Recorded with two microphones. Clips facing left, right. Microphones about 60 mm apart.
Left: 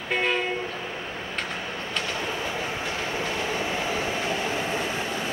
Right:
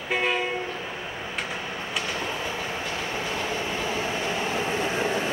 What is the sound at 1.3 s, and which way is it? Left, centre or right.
Train, centre.